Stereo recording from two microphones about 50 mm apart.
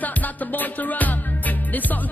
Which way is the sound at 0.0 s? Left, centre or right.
Left.